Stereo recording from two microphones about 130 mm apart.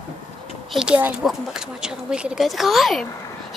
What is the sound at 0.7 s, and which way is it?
A woman's voice, 10° right (ahead or behind).